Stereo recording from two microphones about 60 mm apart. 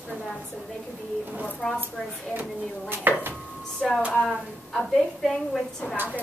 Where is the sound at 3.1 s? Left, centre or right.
Right.